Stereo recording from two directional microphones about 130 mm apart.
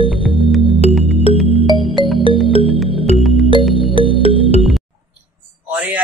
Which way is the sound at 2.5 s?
45° left (ahead or behind).